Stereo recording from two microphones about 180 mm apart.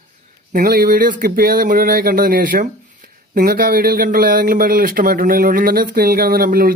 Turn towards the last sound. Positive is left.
turn(degrees=-55)  # may be behind; listen again after turning